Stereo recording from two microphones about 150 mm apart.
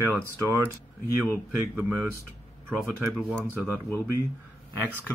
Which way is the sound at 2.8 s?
Centre (ahead or behind).